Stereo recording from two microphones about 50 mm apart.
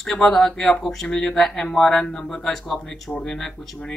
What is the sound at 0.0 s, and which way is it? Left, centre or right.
Speech, centre.